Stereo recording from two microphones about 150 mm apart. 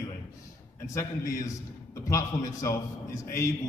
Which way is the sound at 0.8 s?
20° left (ahead or behind).